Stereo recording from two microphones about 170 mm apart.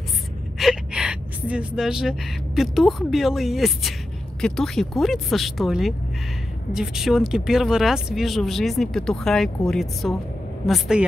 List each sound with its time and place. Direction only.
0.6 s a woman's voice: 5° right (ahead or behind)